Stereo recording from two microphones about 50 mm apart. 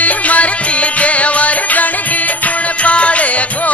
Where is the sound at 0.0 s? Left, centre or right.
Left.